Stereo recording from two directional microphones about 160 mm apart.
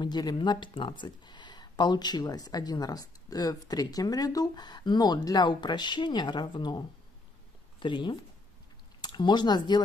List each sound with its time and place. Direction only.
0.0 s speech: 25° left (ahead or behind)
7.8 s speech: 30° left (ahead or behind)